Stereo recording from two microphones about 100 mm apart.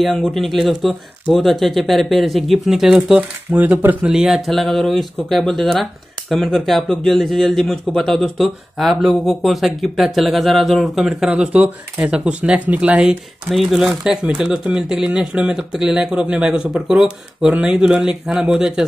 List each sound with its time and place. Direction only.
0.0 s speech: 5° left (ahead or behind)
3.2 s speech: 15° right (ahead or behind)
4.0 s speech: 5° right (ahead or behind)
11.2 s speech: 15° right (ahead or behind)